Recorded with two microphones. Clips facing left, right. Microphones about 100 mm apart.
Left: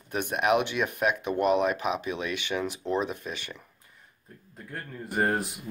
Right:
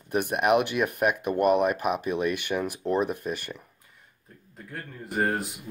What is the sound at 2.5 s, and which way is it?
Speech, 10° right (ahead or behind).